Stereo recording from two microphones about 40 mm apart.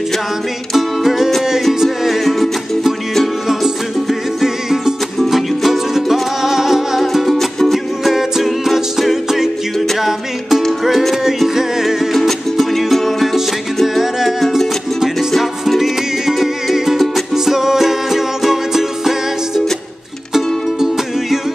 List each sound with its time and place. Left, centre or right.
0.7 s music: centre
12.2 s music: centre